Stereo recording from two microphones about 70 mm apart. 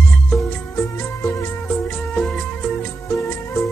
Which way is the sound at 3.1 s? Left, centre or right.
Left.